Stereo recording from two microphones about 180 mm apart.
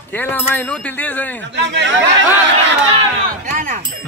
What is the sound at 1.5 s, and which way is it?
Speech, 80° right.